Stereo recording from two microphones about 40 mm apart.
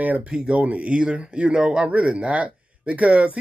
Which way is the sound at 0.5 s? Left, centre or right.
Right.